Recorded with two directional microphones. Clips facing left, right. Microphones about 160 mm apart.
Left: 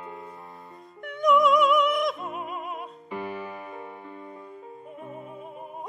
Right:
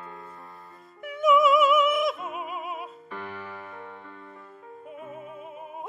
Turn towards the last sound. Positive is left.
turn(degrees=-5)  # may be behind; listen again after turning